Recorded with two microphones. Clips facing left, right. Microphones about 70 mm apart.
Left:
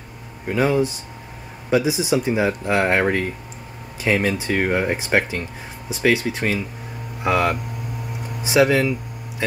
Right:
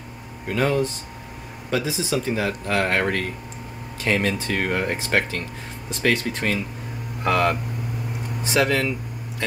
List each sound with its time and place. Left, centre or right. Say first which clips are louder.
0.5 s speech: left 3 dB; centre